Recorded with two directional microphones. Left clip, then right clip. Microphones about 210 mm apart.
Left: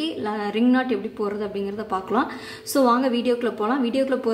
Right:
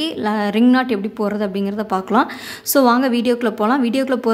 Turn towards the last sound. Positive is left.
turn(degrees=-45)  # may be behind; listen again after turning